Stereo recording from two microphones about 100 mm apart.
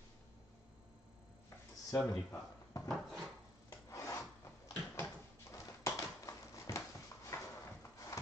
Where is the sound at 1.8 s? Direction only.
35° left (ahead or behind).